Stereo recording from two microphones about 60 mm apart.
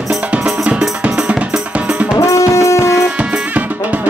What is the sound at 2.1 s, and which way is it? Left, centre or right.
Music, left.